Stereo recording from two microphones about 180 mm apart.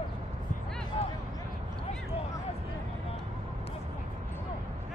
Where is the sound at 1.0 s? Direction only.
35° left (ahead or behind).